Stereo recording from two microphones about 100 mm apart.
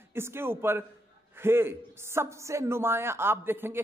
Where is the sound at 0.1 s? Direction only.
25° right (ahead or behind).